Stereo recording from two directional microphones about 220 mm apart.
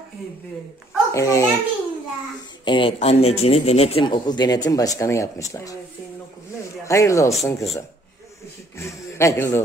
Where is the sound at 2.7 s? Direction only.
20° left (ahead or behind).